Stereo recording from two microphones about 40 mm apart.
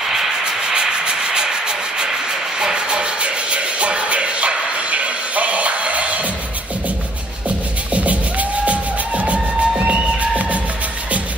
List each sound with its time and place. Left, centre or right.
0.1 s sanding: centre
0.7 s rub: right
2.6 s music: right
7.9 s music: right